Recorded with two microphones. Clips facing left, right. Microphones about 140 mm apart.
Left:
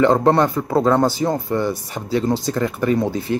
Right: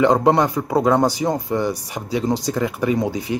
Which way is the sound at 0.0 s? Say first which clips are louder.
Left 1 dB; 15° right (ahead or behind).